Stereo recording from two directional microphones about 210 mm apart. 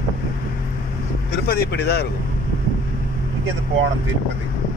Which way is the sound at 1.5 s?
50° left (ahead or behind).